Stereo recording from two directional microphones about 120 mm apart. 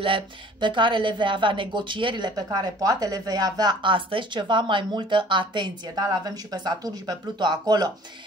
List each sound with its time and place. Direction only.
0.0 s speech: 45° right (ahead or behind)